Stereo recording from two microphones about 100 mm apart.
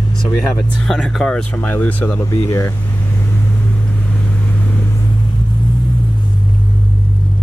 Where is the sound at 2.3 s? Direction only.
30° left (ahead or behind).